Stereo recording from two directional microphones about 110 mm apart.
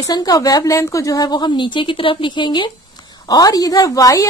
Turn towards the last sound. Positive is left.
turn(degrees=30)  # may be behind; listen again after turning